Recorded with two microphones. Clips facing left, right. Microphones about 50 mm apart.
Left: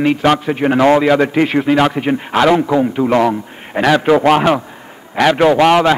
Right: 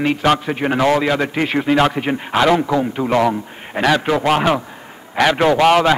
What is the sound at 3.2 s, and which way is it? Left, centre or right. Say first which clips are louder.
A man's voice: left 2 dB; centre.